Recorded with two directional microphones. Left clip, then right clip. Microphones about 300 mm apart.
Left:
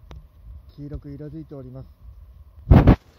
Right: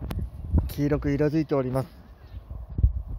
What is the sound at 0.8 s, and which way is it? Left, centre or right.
Speech, centre.